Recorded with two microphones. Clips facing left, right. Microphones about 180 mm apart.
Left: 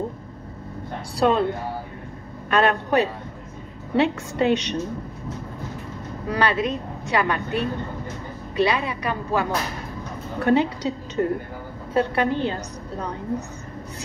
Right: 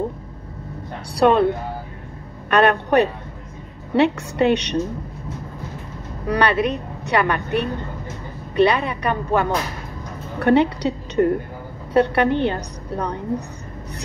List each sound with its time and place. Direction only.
1.1 s a woman's voice: 65° right (ahead or behind)
2.5 s a woman's voice: 65° right (ahead or behind)
6.2 s a woman's voice: 65° right (ahead or behind)
11.9 s a woman's voice: 65° right (ahead or behind)